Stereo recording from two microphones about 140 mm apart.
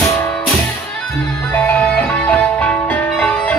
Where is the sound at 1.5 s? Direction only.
10° left (ahead or behind).